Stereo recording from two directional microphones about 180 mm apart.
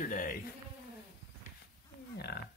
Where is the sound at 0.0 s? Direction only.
50° left (ahead or behind).